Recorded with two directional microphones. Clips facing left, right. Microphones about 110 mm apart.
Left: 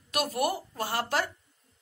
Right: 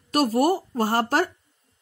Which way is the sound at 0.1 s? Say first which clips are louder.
Right 8 dB; 40° right (ahead or behind).